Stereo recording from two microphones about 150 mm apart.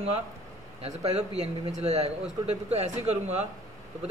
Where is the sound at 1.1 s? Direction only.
45° right (ahead or behind).